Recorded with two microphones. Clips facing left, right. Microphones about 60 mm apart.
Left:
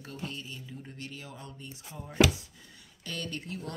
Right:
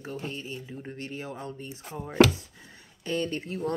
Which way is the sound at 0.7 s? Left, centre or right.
Right.